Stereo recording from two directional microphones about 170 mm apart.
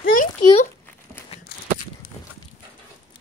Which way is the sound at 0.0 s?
55° left (ahead or behind).